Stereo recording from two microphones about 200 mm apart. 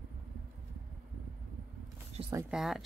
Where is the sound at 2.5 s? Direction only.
Centre (ahead or behind).